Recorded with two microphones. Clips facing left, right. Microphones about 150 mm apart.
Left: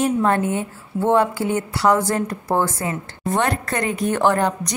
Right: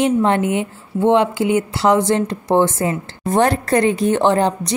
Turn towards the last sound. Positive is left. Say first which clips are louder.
# right 3 dB
turn(degrees=-30)  # may be behind; listen again after turning